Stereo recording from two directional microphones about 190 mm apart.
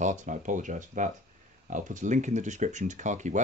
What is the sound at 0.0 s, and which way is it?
Speech, 40° right (ahead or behind).